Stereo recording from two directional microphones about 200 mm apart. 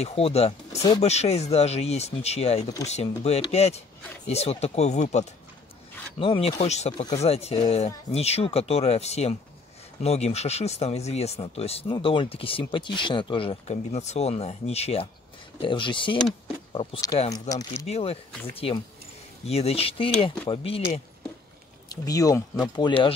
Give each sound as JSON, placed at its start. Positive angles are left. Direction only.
{"t": 0.0, "sound": "speech", "side_deg": 30}
{"t": 2.6, "sound": "speech", "side_deg": 15}
{"t": 2.9, "sound": "speech", "side_deg": 30}
{"t": 17.3, "sound": "speech", "side_deg": 15}
{"t": 17.8, "sound": "speech", "side_deg": 30}
{"t": 19.4, "sound": "speech", "side_deg": 30}
{"t": 21.8, "sound": "speech", "side_deg": 20}